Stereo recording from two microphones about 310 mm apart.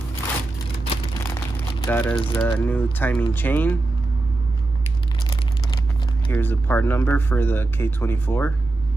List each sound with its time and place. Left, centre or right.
0.8 s crumpling: centre
2.1 s speech: centre
2.4 s speech: centre
6.3 s speech: centre